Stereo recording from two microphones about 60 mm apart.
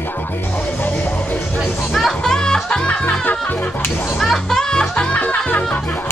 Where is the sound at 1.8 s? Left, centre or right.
Centre; by 4.2 s left.